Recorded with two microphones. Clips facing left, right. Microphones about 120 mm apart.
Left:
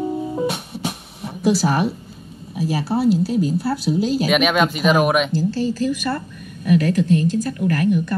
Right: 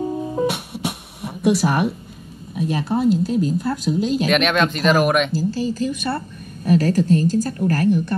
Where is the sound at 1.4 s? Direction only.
30° left (ahead or behind).